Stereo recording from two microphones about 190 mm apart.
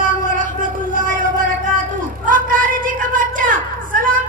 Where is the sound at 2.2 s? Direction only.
45° right (ahead or behind).